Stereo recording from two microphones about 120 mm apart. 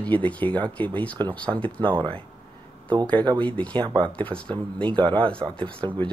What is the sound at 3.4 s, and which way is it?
Speech, 10° left (ahead or behind).